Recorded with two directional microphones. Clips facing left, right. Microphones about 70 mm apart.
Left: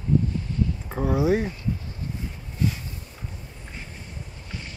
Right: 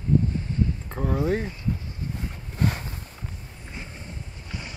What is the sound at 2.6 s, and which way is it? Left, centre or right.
Boat, right.